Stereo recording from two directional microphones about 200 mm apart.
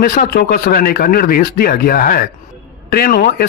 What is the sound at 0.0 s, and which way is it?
Speech, 50° left (ahead or behind).